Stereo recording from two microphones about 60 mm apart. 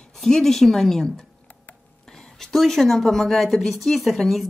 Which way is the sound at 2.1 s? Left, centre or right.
Centre.